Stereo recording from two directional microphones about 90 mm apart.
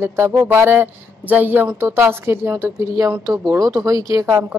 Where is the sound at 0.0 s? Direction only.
30° right (ahead or behind).